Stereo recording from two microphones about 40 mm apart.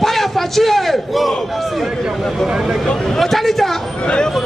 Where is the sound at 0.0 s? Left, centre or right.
Centre.